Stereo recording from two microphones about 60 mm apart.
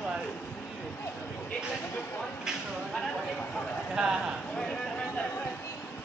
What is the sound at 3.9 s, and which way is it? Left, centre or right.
Speech, centre.